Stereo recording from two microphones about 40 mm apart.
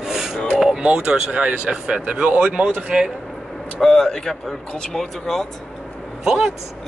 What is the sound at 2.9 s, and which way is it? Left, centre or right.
Speech, right.